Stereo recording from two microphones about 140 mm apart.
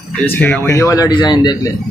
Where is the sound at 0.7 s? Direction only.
25° left (ahead or behind).